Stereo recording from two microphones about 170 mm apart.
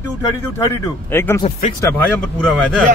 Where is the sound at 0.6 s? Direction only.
15° left (ahead or behind).